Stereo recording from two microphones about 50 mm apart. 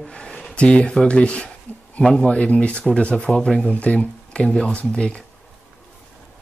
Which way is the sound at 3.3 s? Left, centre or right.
Left.